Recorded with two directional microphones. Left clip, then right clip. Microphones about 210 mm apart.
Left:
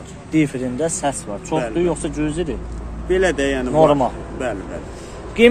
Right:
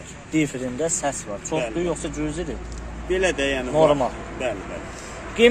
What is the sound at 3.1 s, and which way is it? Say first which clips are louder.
Speech: left 4 dB; 30° left (ahead or behind).